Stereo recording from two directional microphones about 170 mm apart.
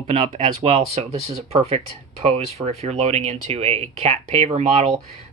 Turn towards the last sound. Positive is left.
turn(degrees=-40)  # may be behind; listen again after turning